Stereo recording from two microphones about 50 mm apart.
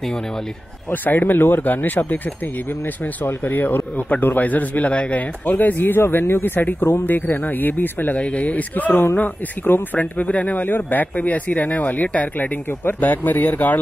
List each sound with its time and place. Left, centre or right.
0.8 s speech: left
3.4 s speech: left
5.4 s speech: left
8.2 s speech: left